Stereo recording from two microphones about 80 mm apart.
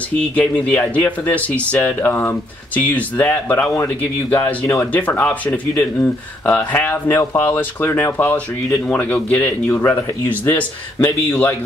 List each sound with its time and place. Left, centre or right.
0.2 s speech: centre
8.6 s speech: centre; by 11.3 s left